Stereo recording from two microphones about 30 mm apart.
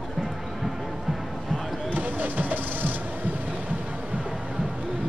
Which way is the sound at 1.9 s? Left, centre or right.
Right.